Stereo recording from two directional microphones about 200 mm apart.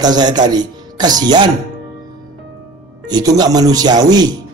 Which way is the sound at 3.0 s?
20° right (ahead or behind).